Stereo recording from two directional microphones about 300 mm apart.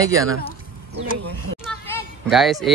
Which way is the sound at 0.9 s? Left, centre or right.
Right.